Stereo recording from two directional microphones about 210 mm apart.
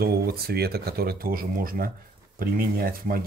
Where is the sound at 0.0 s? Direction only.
45° right (ahead or behind).